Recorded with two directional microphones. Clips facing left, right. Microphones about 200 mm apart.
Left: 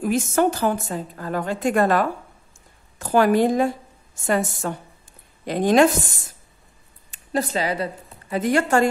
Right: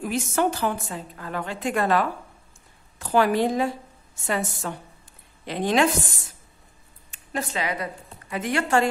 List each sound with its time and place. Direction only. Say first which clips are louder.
0.0 s a woman's voice: left 4 dB; 45° left (ahead or behind)
7.1 s a woman's voice: left 6 dB; 35° left (ahead or behind)